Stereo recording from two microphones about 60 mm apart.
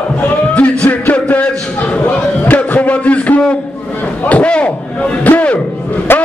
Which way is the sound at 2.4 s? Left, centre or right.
Left.